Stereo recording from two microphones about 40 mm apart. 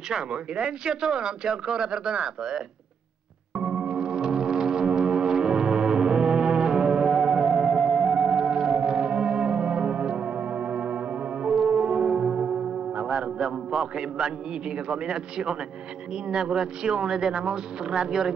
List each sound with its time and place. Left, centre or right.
0.3 s speech: right
3.5 s music: centre
13.0 s a man's voice: centre